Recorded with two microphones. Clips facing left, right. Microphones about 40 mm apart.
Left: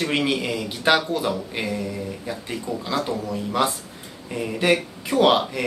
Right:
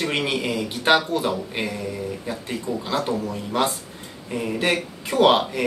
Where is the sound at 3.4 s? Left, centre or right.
Centre.